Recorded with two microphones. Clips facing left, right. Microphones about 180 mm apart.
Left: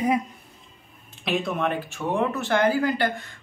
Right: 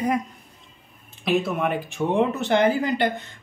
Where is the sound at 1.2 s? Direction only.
Centre (ahead or behind).